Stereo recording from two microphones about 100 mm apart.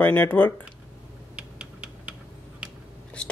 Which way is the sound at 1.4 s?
10° right (ahead or behind).